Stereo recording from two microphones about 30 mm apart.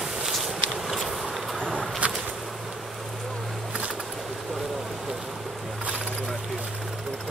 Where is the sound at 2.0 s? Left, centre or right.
Right.